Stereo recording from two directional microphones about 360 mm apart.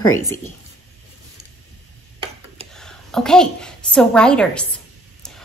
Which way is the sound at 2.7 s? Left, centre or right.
Centre.